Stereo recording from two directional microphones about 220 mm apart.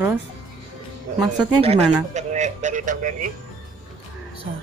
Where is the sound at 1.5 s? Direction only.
25° right (ahead or behind).